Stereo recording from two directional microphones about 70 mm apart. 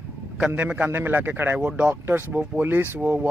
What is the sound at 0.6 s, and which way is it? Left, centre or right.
Speech, right.